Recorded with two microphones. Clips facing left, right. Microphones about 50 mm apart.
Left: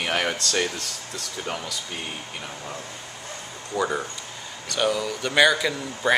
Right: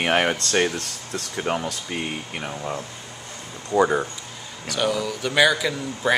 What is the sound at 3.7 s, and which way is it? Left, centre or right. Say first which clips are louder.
Speech: right 7 dB; right.